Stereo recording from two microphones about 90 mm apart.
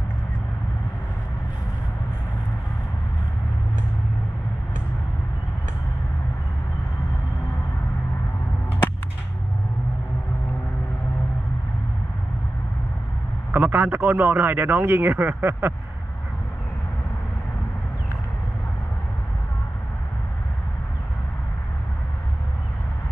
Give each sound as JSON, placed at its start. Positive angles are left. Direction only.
{"t": 13.5, "sound": "a man's voice", "side_deg": -20}